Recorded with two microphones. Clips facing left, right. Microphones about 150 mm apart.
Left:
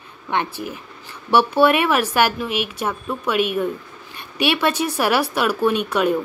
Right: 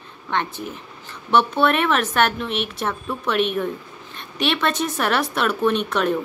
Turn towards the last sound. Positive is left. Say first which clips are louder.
# left 1 dB
turn(degrees=5)  # may be behind; listen again after turning